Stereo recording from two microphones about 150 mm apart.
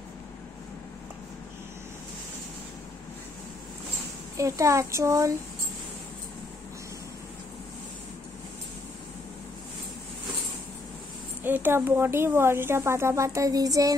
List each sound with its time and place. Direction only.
4.4 s speech: 20° right (ahead or behind)
11.4 s speech: 15° right (ahead or behind)